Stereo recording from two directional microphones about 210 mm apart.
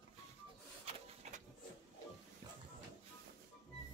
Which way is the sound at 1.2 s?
35° right (ahead or behind).